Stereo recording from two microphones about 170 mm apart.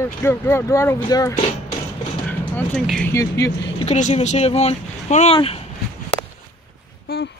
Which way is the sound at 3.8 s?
40° left (ahead or behind).